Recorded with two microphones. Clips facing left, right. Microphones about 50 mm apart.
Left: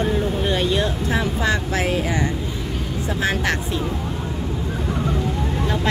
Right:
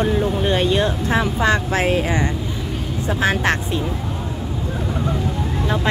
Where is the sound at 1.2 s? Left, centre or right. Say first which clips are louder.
Right 4 dB; right.